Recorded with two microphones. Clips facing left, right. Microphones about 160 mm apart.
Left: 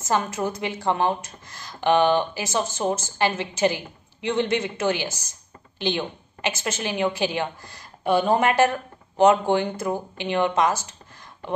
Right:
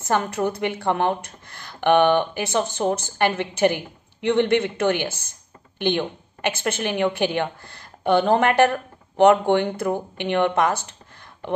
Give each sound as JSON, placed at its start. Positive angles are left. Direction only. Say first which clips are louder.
{"t": 0.0, "sound": "a woman's voice", "louder": "right 2 dB", "side_deg": -60}